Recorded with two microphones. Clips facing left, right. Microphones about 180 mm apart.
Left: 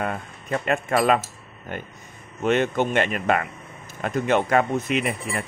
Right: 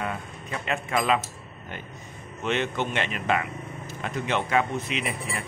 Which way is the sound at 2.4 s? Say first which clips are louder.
Left 6 dB; 50° left (ahead or behind).